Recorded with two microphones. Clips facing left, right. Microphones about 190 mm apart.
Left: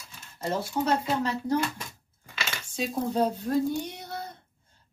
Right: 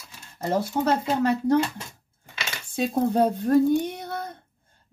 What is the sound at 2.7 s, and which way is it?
Speech, 55° right (ahead or behind).